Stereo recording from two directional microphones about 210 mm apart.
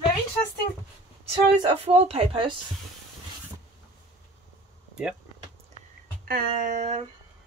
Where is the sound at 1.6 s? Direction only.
30° right (ahead or behind).